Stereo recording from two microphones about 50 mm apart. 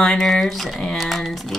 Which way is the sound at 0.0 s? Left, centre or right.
Centre.